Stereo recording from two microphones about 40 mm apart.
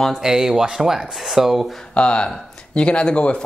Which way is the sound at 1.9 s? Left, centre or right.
Left.